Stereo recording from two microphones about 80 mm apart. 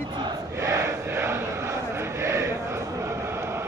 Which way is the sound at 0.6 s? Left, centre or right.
Right.